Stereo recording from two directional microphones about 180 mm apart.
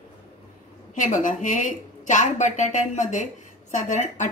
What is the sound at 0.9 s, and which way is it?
A woman's voice, 45° left (ahead or behind).